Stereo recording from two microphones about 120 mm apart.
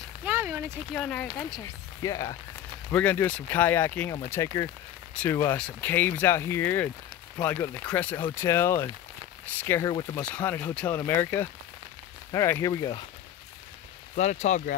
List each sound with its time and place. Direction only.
0.2 s speech: 20° right (ahead or behind)
0.9 s speech: 10° left (ahead or behind)
1.6 s speech: 30° left (ahead or behind)
2.9 s speech: 10° left (ahead or behind); by 13.0 s 30° left (ahead or behind)
14.1 s speech: 75° left (ahead or behind)